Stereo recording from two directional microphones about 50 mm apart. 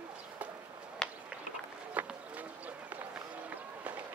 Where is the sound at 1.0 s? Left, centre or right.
Centre.